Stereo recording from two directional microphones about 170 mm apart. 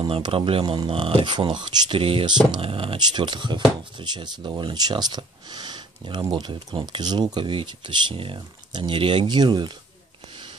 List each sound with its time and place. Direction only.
0.0 s speech: 30° right (ahead or behind)